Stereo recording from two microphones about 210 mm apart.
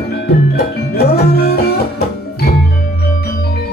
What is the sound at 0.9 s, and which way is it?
Music, 50° left (ahead or behind).